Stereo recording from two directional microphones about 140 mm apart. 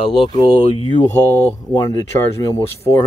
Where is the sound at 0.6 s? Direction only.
50° left (ahead or behind).